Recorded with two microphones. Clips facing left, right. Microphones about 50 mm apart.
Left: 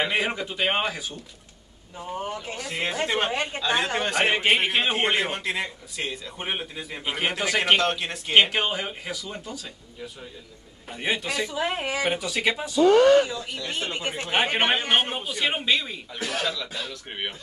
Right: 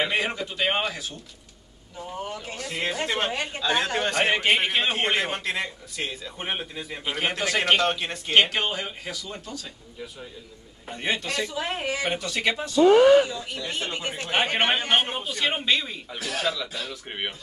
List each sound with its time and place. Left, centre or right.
0.2 s speech: centre
2.5 s a man's voice: centre
7.8 s a man's voice: centre
8.4 s speech: centre
10.9 s speech: centre
12.8 s speech: centre
13.7 s a man's voice: centre